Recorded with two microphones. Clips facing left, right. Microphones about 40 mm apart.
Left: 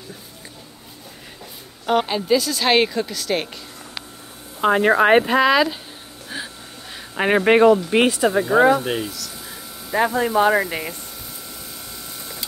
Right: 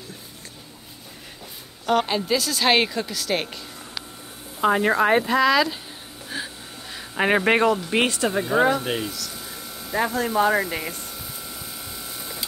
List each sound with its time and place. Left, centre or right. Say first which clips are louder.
1.9 s speech: left 3 dB; centre
4.6 s speech: left 3 dB; centre
6.2 s speech: even; centre
9.8 s speech: left 4 dB; centre
10.6 s speech: left 2 dB; centre
12.2 s printer: even; centre